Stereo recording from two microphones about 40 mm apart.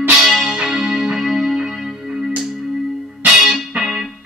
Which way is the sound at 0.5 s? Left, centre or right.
Centre.